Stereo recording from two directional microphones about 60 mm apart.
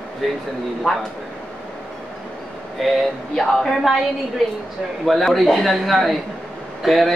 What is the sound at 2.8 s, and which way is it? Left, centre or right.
Speech, centre.